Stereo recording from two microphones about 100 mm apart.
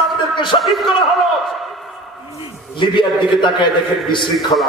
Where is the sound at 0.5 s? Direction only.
Centre (ahead or behind).